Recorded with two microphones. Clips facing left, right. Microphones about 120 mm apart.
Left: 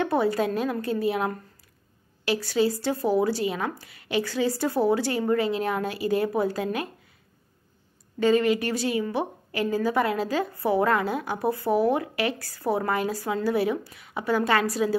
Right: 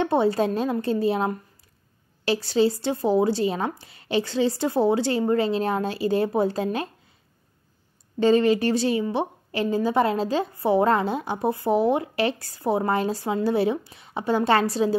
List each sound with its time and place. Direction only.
0.0 s a woman's voice: 25° right (ahead or behind)
8.2 s a woman's voice: 30° right (ahead or behind)